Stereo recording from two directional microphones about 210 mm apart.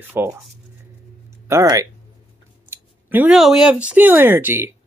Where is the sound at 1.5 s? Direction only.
15° right (ahead or behind).